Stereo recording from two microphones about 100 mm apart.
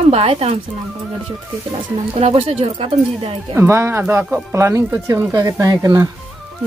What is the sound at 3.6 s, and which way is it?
Speech, 30° right (ahead or behind).